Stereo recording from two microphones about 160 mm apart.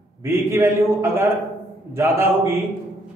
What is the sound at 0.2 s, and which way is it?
A man's voice, 15° right (ahead or behind).